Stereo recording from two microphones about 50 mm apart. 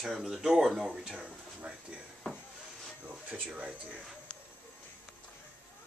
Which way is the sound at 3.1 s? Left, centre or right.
Right.